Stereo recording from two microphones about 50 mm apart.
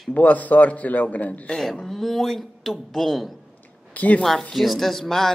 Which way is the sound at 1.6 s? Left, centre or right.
Centre.